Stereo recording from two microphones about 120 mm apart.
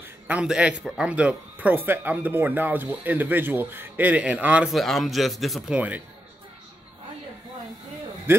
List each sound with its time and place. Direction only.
0.3 s a man's voice: 10° right (ahead or behind)
5.8 s a man's voice: 10° right (ahead or behind)
8.3 s a man's voice: 20° right (ahead or behind)